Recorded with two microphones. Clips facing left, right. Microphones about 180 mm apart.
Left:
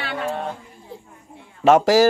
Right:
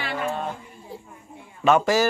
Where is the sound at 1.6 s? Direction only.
90° left.